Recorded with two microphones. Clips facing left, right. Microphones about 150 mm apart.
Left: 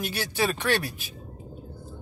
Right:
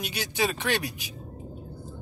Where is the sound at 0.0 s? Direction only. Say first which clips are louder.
Left 1 dB; 15° right (ahead or behind).